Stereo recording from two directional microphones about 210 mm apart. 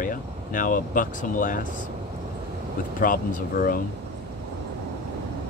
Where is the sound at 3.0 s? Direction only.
40° left (ahead or behind).